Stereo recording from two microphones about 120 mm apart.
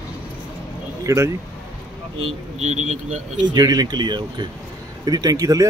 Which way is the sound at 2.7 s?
75° right (ahead or behind).